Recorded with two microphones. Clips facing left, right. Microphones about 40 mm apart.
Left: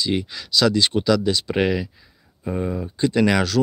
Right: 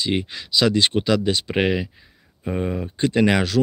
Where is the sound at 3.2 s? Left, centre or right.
Right.